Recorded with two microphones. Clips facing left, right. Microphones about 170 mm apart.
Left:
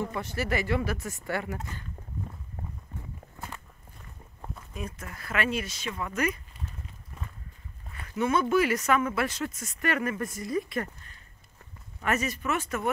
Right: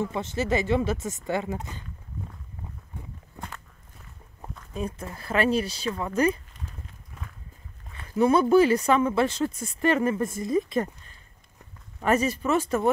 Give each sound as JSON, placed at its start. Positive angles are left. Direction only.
{"t": 0.1, "sound": "speech", "side_deg": -20}
{"t": 3.3, "sound": "walk", "side_deg": 5}
{"t": 4.7, "sound": "speech", "side_deg": -30}
{"t": 7.1, "sound": "a sound", "side_deg": 0}
{"t": 7.9, "sound": "speech", "side_deg": -35}
{"t": 12.0, "sound": "speech", "side_deg": -30}